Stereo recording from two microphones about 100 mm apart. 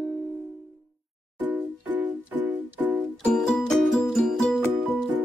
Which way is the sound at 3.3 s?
5° left (ahead or behind).